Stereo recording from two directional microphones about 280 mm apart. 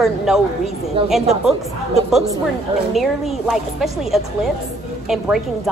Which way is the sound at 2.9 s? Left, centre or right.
Centre.